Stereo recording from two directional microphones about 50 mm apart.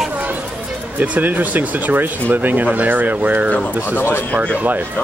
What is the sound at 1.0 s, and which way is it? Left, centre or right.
Speech, right.